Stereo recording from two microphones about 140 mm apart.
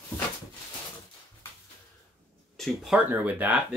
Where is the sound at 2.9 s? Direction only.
10° right (ahead or behind).